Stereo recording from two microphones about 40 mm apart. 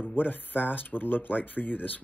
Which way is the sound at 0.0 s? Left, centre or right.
Left.